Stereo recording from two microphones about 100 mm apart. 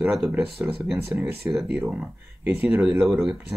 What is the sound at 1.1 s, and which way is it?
Speech, 5° right (ahead or behind).